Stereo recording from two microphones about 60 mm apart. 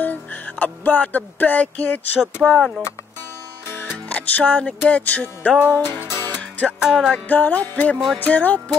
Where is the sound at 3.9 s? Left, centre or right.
Left.